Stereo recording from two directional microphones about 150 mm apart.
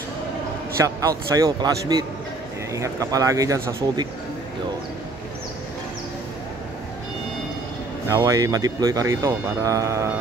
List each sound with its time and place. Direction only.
0.7 s speech: 20° right (ahead or behind)
8.1 s speech: 25° right (ahead or behind)